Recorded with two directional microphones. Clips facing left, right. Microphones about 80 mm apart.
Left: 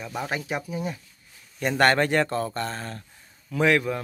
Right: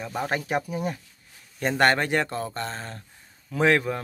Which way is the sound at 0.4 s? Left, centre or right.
Right.